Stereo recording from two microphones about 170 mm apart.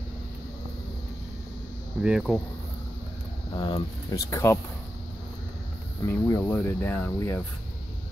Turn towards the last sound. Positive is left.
turn(degrees=15)  # may be behind; listen again after turning